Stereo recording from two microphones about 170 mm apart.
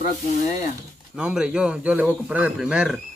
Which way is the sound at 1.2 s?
5° right (ahead or behind).